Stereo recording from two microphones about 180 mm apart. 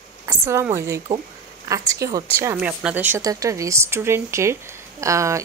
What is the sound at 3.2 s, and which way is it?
A woman's voice, 20° right (ahead or behind).